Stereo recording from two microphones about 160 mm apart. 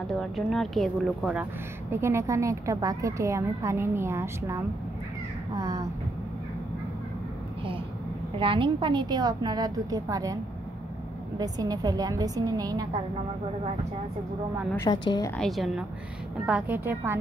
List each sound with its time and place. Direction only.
0.2 s a woman's voice: centre (ahead or behind); by 5.9 s 20° right (ahead or behind)
8.4 s a woman's voice: 30° right (ahead or behind)
11.3 s a woman's voice: 25° right (ahead or behind)
14.8 s a woman's voice: 25° left (ahead or behind)
15.3 s a woman's voice: centre (ahead or behind)